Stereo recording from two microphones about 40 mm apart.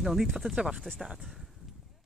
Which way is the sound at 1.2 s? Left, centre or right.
Centre.